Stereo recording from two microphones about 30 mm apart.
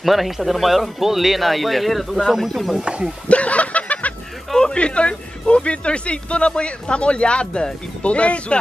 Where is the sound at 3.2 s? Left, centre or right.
Left.